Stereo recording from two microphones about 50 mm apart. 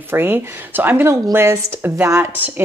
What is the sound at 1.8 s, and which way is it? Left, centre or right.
Speech, right.